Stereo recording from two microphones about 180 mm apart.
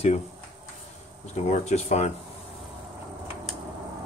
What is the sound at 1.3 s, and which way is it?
Speech, 40° left (ahead or behind).